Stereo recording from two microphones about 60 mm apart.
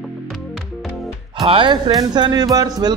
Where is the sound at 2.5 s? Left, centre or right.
Right.